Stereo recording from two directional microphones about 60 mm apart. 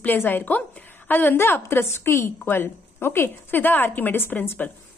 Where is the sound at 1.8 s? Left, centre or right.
Left.